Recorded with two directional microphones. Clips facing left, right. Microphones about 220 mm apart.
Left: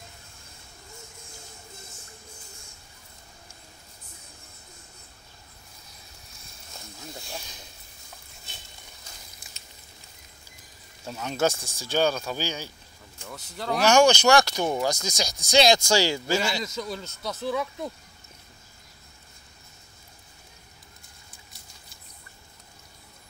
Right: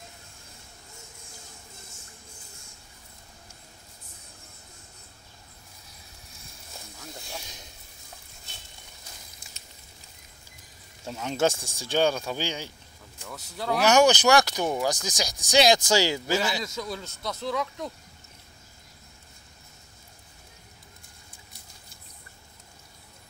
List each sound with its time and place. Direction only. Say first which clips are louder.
11.1 s speech: even; 20° right (ahead or behind)
13.2 s speech: right 1 dB; centre (ahead or behind)
13.8 s speech: left 1 dB; 20° right (ahead or behind)
16.5 s speech: left 1 dB; centre (ahead or behind)